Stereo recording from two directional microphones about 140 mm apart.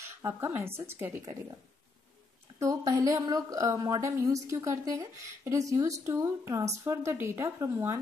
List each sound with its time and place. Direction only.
0.3 s speech: 15° right (ahead or behind)
2.6 s a woman's voice: 25° right (ahead or behind)